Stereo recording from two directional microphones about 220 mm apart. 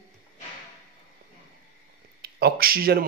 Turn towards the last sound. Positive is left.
turn(degrees=-45)  # may be behind; listen again after turning